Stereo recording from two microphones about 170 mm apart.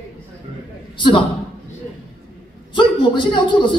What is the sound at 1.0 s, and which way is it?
Speech, 30° left (ahead or behind).